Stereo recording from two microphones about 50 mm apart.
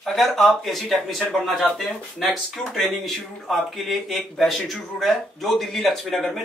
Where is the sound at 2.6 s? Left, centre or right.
Centre.